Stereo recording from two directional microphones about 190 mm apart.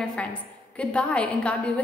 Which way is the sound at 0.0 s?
5° left (ahead or behind).